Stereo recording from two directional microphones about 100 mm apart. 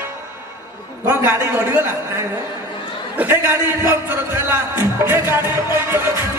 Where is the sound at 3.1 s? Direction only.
15° right (ahead or behind).